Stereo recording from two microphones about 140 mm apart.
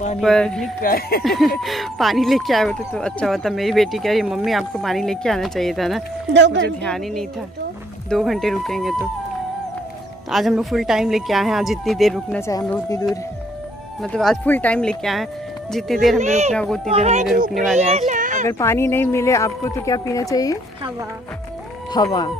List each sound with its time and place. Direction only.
0.2 s speech: 5° left (ahead or behind)
0.8 s speech: 90° left
1.2 s speech: centre (ahead or behind)
10.3 s speech: centre (ahead or behind)
12.4 s speech: 20° left (ahead or behind)
14.0 s speech: 5° left (ahead or behind)
16.2 s speech: 55° right (ahead or behind)
16.5 s speech: 5° left (ahead or behind)
16.9 s speech: 50° right (ahead or behind)
18.1 s a sound: 65° right (ahead or behind)
18.5 s speech: 20° left (ahead or behind)
21.9 s speech: 30° left (ahead or behind)